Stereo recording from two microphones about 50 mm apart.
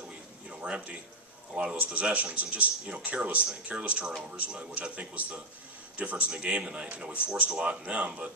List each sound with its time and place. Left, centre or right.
0.6 s a man's voice: right